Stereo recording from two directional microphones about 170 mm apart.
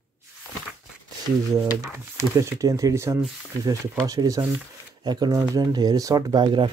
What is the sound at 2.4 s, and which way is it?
Speech, 20° right (ahead or behind).